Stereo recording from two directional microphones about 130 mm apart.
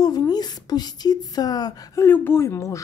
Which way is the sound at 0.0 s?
30° left (ahead or behind).